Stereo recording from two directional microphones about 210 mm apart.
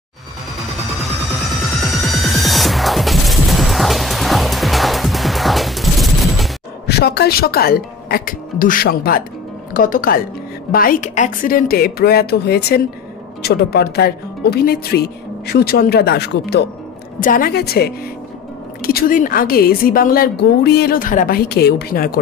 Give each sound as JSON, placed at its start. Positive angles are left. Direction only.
{"t": 1.8, "sound": "music", "side_deg": 0}
{"t": 6.9, "sound": "a woman's voice", "side_deg": 50}